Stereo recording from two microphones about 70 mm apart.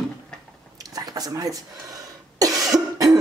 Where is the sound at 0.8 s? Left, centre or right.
Right.